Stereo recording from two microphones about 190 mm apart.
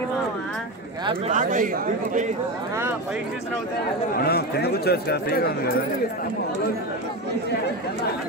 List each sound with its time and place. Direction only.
1.3 s speech: 45° right (ahead or behind)
4.2 s speech: 55° left (ahead or behind)